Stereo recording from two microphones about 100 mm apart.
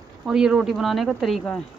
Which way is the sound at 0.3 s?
5° right (ahead or behind).